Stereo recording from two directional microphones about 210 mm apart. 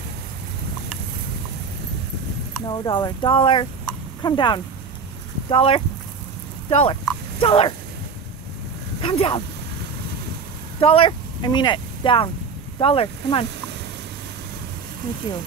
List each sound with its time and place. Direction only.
2.6 s speech: 20° left (ahead or behind)
7.1 s a sound: 25° left (ahead or behind)
9.0 s speech: 25° left (ahead or behind)
10.8 s speech: 25° left (ahead or behind)
15.3 s speech: 20° left (ahead or behind)